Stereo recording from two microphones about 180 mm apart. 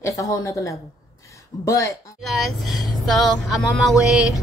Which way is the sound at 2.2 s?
Centre (ahead or behind).